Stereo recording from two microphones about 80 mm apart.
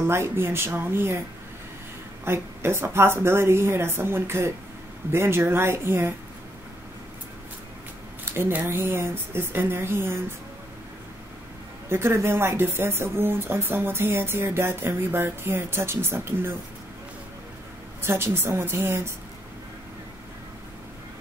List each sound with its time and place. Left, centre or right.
0.0 s speech: right
2.2 s speech: right
8.3 s speech: right
11.9 s speech: right
18.0 s speech: right